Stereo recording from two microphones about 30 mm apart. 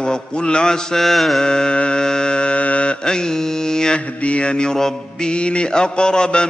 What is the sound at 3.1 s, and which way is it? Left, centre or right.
Mantra, left.